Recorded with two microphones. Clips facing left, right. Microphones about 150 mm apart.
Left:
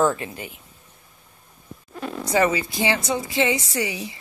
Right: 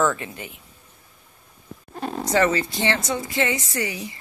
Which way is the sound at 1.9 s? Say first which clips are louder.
Right 2 dB; 40° right (ahead or behind).